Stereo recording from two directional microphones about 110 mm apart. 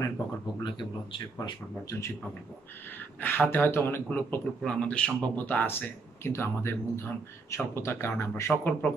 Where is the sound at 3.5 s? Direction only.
20° left (ahead or behind).